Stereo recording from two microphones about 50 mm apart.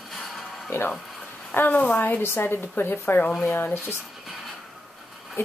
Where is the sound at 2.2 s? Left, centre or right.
Left.